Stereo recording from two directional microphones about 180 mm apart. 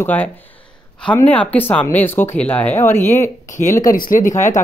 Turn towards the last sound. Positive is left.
turn(degrees=45)  # may be behind; listen again after turning